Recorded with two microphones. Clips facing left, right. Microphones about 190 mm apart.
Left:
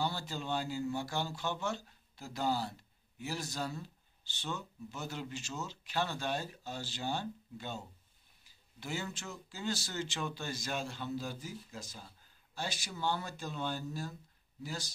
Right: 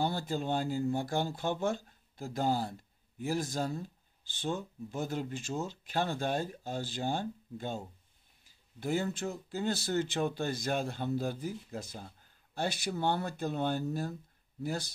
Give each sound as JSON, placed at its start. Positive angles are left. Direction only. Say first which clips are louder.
{"t": 0.0, "sound": "speech", "louder": "right 5 dB", "side_deg": -50}